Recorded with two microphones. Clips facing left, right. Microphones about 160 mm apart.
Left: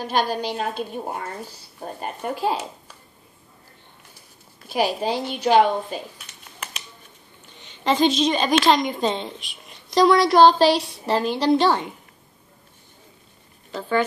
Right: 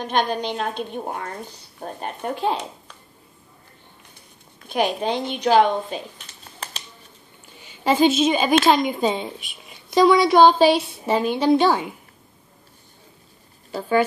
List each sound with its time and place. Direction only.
0.0 s a woman's voice: 5° left (ahead or behind)
4.6 s a woman's voice: 5° left (ahead or behind)
6.1 s a sound: 30° right (ahead or behind)
7.5 s a woman's voice: 10° right (ahead or behind)